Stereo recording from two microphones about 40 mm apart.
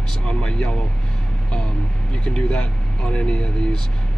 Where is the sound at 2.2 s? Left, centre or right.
Left.